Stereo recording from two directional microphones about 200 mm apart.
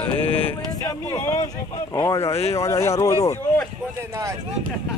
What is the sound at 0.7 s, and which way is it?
Speech, 15° left (ahead or behind).